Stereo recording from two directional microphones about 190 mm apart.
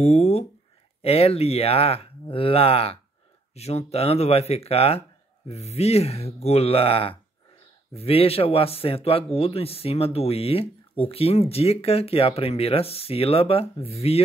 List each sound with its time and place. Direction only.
0.0 s a man's voice: 35° left (ahead or behind)